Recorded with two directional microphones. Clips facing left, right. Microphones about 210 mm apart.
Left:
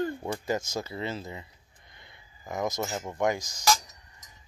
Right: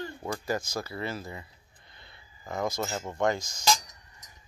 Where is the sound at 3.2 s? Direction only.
15° left (ahead or behind).